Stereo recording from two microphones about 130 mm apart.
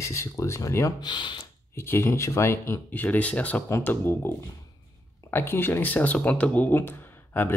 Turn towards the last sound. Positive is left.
turn(degrees=15)  # may be behind; listen again after turning